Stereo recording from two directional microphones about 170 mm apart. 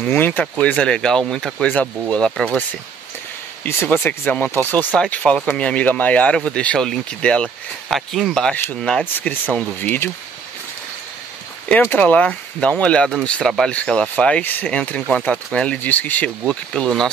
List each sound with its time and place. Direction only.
0.1 s speech: 10° left (ahead or behind)
3.6 s speech: 10° left (ahead or behind)
11.7 s speech: 10° left (ahead or behind)